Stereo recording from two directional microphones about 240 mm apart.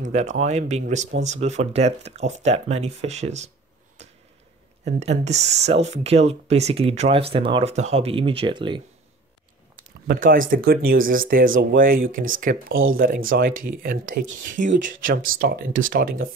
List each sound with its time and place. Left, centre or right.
0.0 s speech: right
4.8 s speech: right
10.0 s speech: right